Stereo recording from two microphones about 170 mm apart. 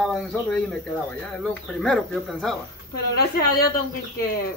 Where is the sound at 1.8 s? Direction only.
Centre (ahead or behind).